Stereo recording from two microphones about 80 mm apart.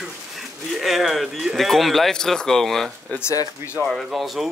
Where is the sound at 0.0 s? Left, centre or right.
Centre.